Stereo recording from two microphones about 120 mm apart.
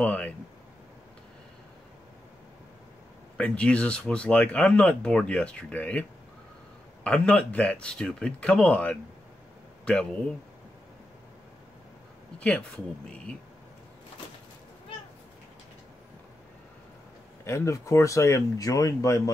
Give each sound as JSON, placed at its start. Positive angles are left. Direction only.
{"t": 0.0, "sound": "speech", "side_deg": 10}
{"t": 3.3, "sound": "speech", "side_deg": 10}
{"t": 12.4, "sound": "speech", "side_deg": 10}
{"t": 17.5, "sound": "speech", "side_deg": 25}